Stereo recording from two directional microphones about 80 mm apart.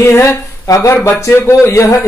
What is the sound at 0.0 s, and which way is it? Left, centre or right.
Speech, left.